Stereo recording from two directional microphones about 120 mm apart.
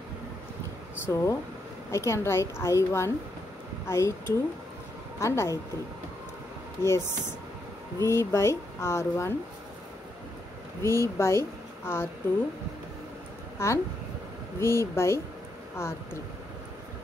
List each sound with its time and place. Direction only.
1.0 s speech: 25° left (ahead or behind)
6.8 s speech: 20° left (ahead or behind)
10.8 s speech: 20° left (ahead or behind)
13.6 s speech: 20° left (ahead or behind)